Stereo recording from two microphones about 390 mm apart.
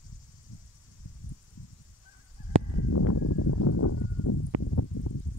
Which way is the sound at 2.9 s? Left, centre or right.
Left.